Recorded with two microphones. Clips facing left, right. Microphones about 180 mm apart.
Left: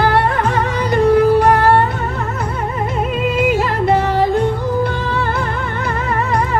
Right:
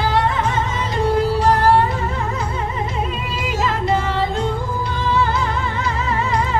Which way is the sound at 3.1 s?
60° left (ahead or behind).